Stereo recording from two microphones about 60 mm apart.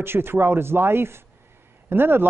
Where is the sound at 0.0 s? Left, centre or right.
Right.